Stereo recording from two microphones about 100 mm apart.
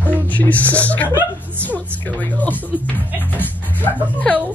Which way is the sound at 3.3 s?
15° left (ahead or behind).